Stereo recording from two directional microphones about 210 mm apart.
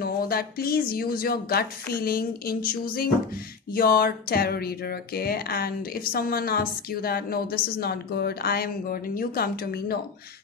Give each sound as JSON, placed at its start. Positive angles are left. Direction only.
{"t": 0.0, "sound": "speech", "side_deg": 45}